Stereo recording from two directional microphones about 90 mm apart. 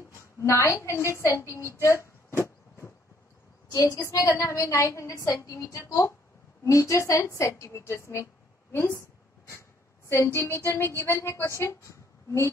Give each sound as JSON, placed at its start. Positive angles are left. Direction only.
{"t": 0.4, "sound": "a woman's voice", "side_deg": 35}
{"t": 10.0, "sound": "music", "side_deg": 30}
{"t": 11.0, "sound": "a woman's voice", "side_deg": 30}